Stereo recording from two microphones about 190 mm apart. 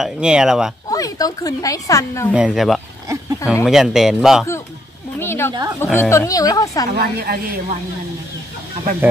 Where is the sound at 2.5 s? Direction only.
Centre (ahead or behind).